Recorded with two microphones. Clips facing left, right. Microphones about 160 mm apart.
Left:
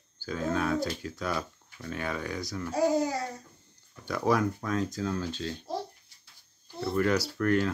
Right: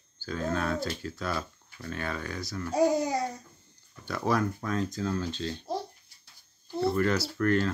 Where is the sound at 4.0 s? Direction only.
15° left (ahead or behind).